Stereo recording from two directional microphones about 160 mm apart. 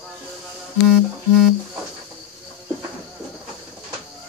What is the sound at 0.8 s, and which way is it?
Music, 5° right (ahead or behind).